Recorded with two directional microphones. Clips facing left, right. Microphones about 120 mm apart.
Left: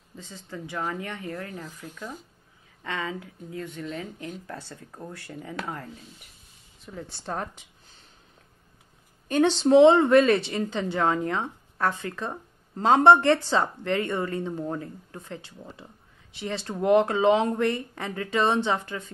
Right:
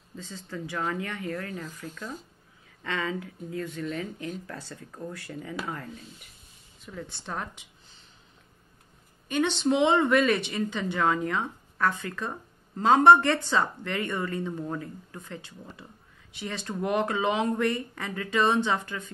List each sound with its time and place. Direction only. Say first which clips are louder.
0.1 s speech: right 1 dB; 15° left (ahead or behind)
7.0 s a woman's voice: left 3 dB; 35° left (ahead or behind)
9.3 s speech: left 6 dB; 35° left (ahead or behind)